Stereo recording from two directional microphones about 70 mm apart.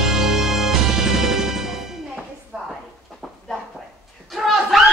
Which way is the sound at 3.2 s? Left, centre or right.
Centre.